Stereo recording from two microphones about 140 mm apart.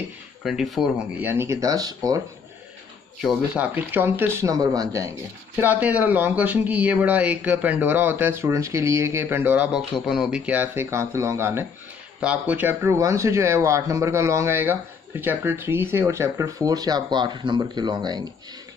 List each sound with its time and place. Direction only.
0.4 s speech: centre (ahead or behind)
1.2 s speech: 15° right (ahead or behind)
3.2 s speech: centre (ahead or behind)
3.7 s speech: 15° right (ahead or behind)
5.6 s speech: 10° right (ahead or behind); by 18.3 s 30° right (ahead or behind)